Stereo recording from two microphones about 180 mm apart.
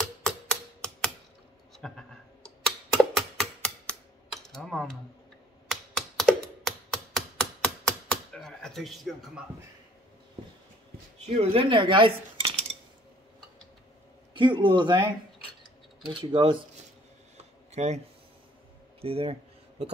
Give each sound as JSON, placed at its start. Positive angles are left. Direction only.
{"t": 0.2, "sound": "typewriter", "side_deg": 5}
{"t": 1.8, "sound": "a sound", "side_deg": 5}
{"t": 4.5, "sound": "speech", "side_deg": 0}
{"t": 5.7, "sound": "computer keyboard", "side_deg": 0}
{"t": 11.2, "sound": "cutlery", "side_deg": -35}
{"t": 14.3, "sound": "cutlery", "side_deg": -25}
{"t": 16.1, "sound": "cutlery", "side_deg": -25}
{"t": 17.6, "sound": "speech", "side_deg": -40}